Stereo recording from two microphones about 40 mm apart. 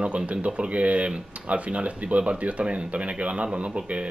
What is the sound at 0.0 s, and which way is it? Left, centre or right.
Speech, right.